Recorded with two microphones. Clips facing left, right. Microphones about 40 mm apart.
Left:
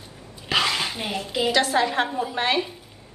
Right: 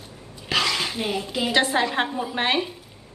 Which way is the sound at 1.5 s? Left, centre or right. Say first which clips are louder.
Even; centre.